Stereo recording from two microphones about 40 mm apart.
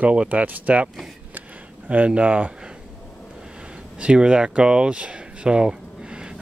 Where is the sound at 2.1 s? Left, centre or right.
Right.